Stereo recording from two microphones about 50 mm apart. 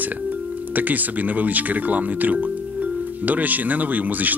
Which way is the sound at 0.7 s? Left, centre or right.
Right.